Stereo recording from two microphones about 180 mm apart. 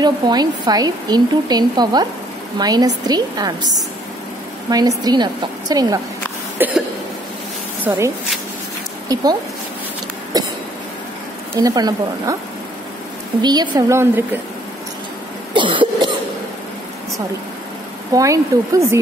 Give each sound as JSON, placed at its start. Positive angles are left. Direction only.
{"t": 0.0, "sound": "a woman's voice", "side_deg": -20}
{"t": 7.8, "sound": "speech", "side_deg": -15}
{"t": 9.1, "sound": "a woman's voice", "side_deg": -20}
{"t": 10.3, "sound": "a sound", "side_deg": -20}
{"t": 11.5, "sound": "a woman's voice", "side_deg": -20}
{"t": 13.4, "sound": "a woman's voice", "side_deg": -25}
{"t": 15.5, "sound": "cough", "side_deg": -25}
{"t": 18.1, "sound": "speech", "side_deg": -20}